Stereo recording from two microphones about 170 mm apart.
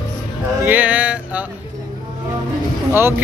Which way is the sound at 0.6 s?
10° right (ahead or behind).